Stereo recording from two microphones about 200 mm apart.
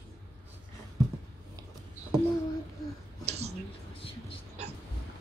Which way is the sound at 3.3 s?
30° right (ahead or behind).